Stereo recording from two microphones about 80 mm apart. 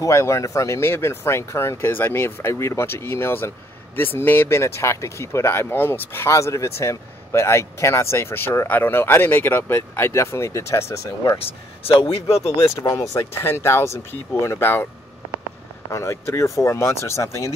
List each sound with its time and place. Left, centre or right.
0.0 s speech: left
12.8 s speech: left
15.9 s speech: left